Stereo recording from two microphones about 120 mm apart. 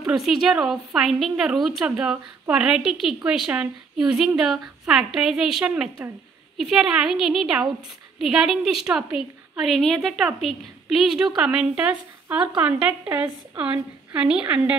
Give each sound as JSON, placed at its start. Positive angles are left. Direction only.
{"t": 0.0, "sound": "a woman's voice", "side_deg": -5}